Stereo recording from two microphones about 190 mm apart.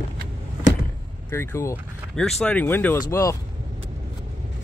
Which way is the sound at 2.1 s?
5° left (ahead or behind).